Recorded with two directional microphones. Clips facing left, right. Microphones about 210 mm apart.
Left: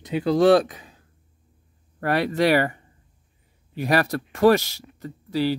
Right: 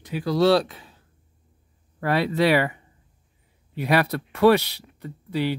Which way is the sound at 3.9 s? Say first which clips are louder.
Even; 45° left (ahead or behind).